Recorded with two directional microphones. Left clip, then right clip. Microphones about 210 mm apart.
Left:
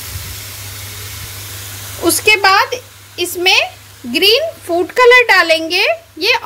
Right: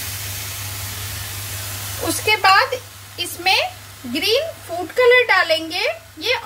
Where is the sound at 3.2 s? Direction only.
45° left (ahead or behind).